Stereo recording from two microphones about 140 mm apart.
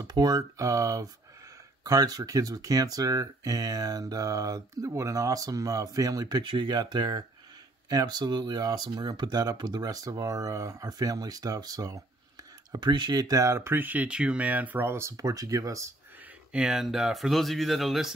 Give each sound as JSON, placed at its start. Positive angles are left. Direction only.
{"t": 0.0, "sound": "speech", "side_deg": -30}
{"t": 16.5, "sound": "speech", "side_deg": -5}